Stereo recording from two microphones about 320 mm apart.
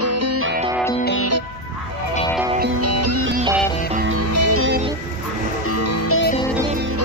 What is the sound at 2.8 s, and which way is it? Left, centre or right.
Music, right.